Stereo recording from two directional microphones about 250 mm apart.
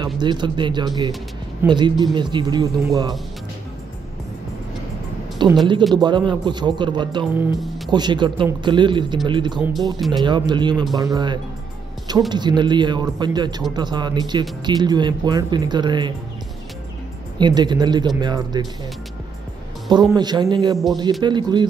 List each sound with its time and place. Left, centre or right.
0.0 s speech: centre
5.4 s a man's voice: centre
7.3 s speech: centre
7.9 s speech: centre
9.9 s speech: centre
10.2 s speech: centre
17.4 s speech: centre
19.9 s speech: centre